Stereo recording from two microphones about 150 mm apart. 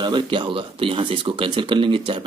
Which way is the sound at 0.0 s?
30° right (ahead or behind).